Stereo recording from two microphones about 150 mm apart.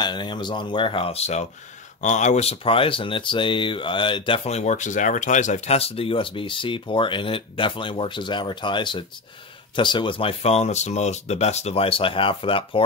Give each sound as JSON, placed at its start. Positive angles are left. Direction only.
{"t": 0.0, "sound": "speech", "side_deg": 30}